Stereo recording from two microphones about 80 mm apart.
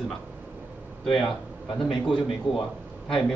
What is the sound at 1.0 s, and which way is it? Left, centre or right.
A man's voice, centre.